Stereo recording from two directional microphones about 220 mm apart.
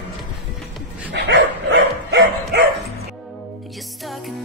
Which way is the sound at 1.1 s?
50° right (ahead or behind).